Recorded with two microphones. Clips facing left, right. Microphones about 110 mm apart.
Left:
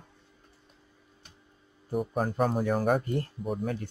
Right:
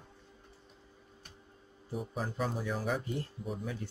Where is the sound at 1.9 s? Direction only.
55° left (ahead or behind).